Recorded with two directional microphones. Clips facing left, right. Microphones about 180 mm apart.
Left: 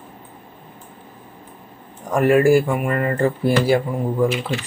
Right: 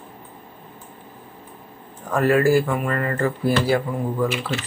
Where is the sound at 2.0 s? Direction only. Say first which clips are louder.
Left 3 dB; 20° left (ahead or behind).